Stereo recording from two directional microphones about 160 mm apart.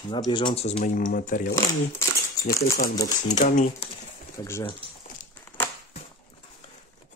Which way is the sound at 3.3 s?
50° left (ahead or behind).